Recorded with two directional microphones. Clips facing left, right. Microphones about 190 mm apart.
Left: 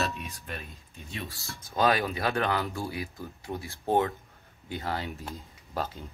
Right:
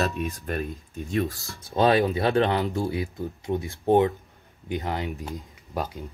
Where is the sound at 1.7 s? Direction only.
25° right (ahead or behind).